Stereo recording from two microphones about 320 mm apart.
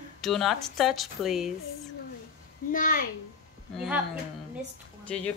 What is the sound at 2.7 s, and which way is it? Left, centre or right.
Speech, left.